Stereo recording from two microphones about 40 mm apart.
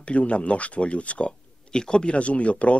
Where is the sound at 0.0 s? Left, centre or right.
Left.